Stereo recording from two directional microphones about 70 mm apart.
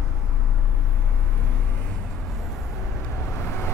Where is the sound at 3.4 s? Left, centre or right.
Left.